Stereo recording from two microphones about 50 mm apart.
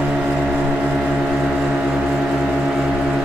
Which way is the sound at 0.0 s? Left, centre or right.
Right.